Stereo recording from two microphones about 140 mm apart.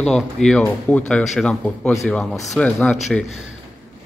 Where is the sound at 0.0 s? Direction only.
5° left (ahead or behind).